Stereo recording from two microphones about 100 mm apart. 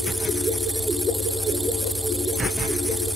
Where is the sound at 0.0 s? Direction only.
Centre (ahead or behind).